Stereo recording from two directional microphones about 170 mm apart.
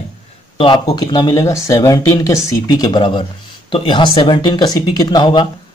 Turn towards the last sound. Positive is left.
turn(degrees=25)  # may be behind; listen again after turning